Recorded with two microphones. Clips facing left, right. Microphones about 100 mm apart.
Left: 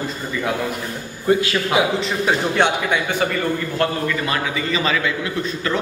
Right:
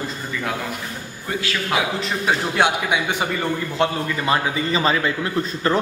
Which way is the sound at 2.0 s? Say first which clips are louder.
Left 2 dB; centre (ahead or behind).